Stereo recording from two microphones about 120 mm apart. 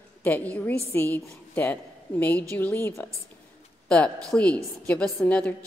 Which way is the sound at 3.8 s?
10° left (ahead or behind).